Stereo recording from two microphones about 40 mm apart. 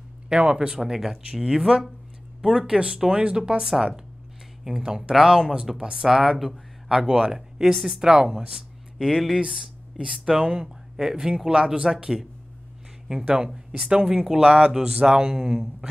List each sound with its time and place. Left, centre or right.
0.3 s speech: centre
4.6 s speech: centre
7.1 s speech: centre
8.0 s speech: centre
8.9 s speech: centre
13.7 s speech: right